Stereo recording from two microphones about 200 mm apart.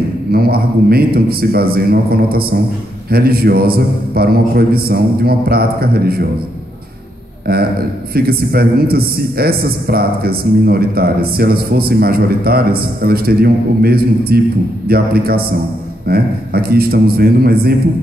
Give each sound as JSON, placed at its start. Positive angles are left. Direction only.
{"t": 0.3, "sound": "a man's voice", "side_deg": -50}
{"t": 7.5, "sound": "a man's voice", "side_deg": -50}